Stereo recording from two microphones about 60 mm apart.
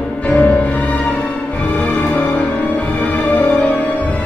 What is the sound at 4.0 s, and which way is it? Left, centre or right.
Music, left.